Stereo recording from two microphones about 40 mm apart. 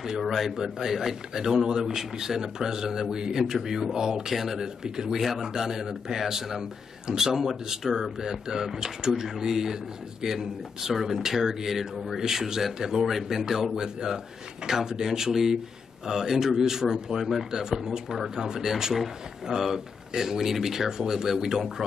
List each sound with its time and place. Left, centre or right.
0.2 s speech: centre
0.6 s a man's voice: centre
4.8 s a man's voice: centre